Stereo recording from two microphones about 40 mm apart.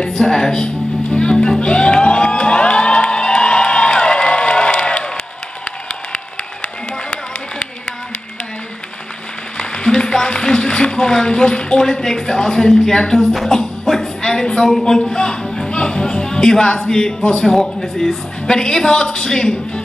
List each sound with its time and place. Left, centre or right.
0.1 s speech: centre
0.7 s music: left
9.6 s speech: left
13.8 s a sound: centre
14.9 s music: centre
16.9 s speech: left
17.7 s speech: centre
18.5 s speech: centre